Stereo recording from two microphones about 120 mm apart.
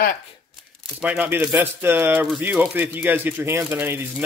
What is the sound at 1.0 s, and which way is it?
Speech, 15° right (ahead or behind).